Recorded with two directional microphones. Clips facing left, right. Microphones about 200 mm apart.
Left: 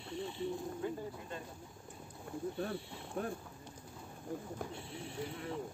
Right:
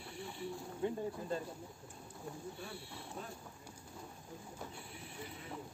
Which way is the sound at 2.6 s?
55° left (ahead or behind).